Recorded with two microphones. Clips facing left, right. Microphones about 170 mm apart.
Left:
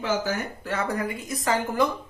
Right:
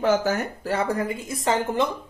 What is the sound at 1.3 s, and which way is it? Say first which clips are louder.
Speech: right 1 dB; 25° right (ahead or behind).